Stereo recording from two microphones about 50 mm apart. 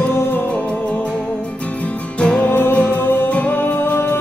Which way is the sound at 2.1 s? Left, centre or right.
Left.